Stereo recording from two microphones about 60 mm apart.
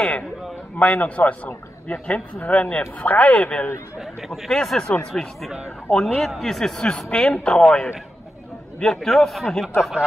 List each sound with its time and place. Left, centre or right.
0.7 s a man's voice: left
4.0 s a man's voice: centre
4.5 s a man's voice: centre
5.9 s a man's voice: centre
7.1 s a man's voice: centre